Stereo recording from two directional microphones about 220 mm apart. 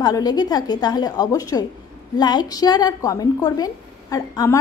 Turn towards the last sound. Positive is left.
turn(degrees=15)  # may be behind; listen again after turning